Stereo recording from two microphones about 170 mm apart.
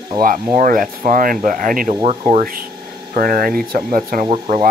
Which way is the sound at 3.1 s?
60° right (ahead or behind).